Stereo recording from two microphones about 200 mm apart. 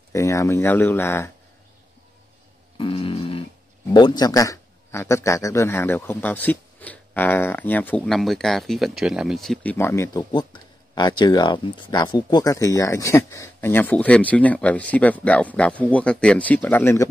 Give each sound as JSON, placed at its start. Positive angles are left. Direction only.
{"t": 0.1, "sound": "a man's voice", "side_deg": 15}
{"t": 2.8, "sound": "a sound", "side_deg": 25}
{"t": 3.9, "sound": "a man's voice", "side_deg": 20}